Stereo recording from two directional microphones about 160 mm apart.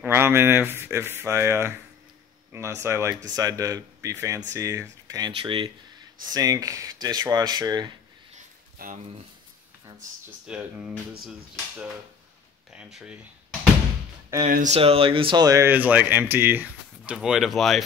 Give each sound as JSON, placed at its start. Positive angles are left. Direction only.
{"t": 0.0, "sound": "speech", "side_deg": -15}
{"t": 8.8, "sound": "speech", "side_deg": -65}
{"t": 10.4, "sound": "speech", "side_deg": -5}
{"t": 12.7, "sound": "speech", "side_deg": -5}
{"t": 14.7, "sound": "speech", "side_deg": -35}